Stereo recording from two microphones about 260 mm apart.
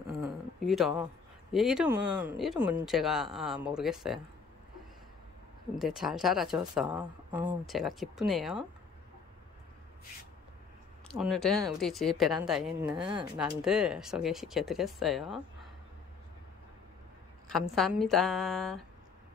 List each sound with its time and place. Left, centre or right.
0.2 s a sound: centre
1.5 s speech: centre
5.8 s speech: centre
11.1 s speech: centre
12.9 s speech: centre
13.4 s speech: centre
17.5 s speech: centre